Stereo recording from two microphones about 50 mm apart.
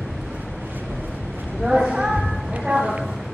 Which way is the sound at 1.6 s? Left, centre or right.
Centre.